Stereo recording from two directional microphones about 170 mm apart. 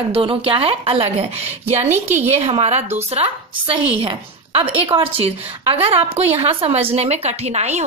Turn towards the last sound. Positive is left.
turn(degrees=-40)  # may be behind; listen again after turning